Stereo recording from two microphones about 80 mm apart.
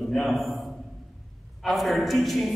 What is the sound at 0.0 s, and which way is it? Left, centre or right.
A man's voice, centre.